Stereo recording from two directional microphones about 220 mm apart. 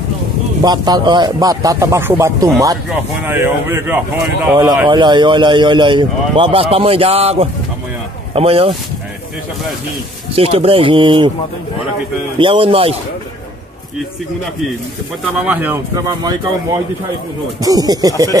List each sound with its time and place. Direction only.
0.7 s speech: 20° right (ahead or behind)
10.3 s speech: 25° right (ahead or behind)
12.4 s speech: 25° right (ahead or behind)
15.3 s speech: 5° right (ahead or behind)
17.6 s speech: 15° right (ahead or behind)